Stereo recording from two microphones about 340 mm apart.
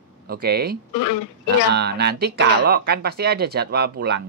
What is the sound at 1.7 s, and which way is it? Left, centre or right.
Speech, right.